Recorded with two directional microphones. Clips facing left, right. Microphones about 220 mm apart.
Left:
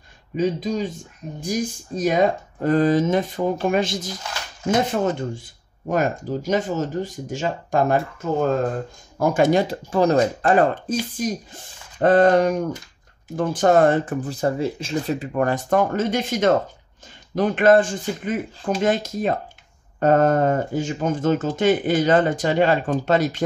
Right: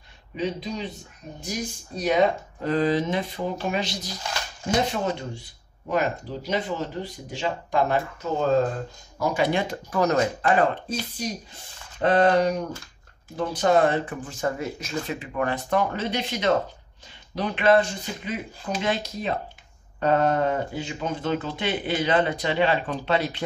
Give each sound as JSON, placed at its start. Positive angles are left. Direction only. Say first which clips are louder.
{"t": 0.4, "sound": "speech", "louder": "left 7 dB", "side_deg": 45}
{"t": 12.0, "sound": "speech", "louder": "left 4 dB", "side_deg": 45}